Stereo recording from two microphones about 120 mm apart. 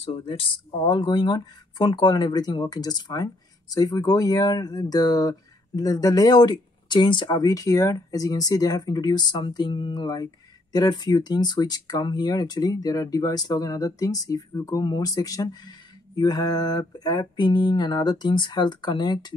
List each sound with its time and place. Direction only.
0.0 s speech: 50° left (ahead or behind); by 19.3 s 35° left (ahead or behind)